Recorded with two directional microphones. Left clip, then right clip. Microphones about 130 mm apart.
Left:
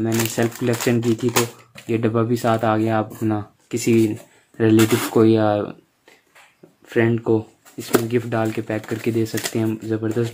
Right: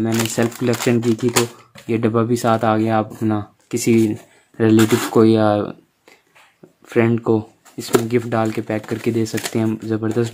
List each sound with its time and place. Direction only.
0.0 s speech: 40° right (ahead or behind)
6.9 s speech: 50° right (ahead or behind); by 9.3 s 30° right (ahead or behind)
9.5 s speech: 45° right (ahead or behind)